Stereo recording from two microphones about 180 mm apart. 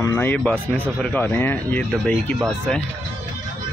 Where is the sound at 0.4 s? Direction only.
5° left (ahead or behind).